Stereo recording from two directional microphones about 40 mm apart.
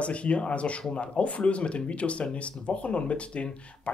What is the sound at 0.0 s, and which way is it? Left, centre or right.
Speech, left.